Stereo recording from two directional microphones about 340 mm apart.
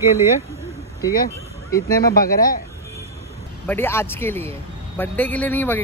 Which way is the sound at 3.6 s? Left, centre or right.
Centre.